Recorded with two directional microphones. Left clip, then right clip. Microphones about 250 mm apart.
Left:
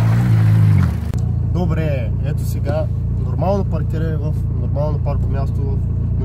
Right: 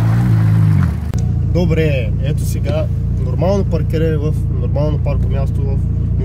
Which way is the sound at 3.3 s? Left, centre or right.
Centre.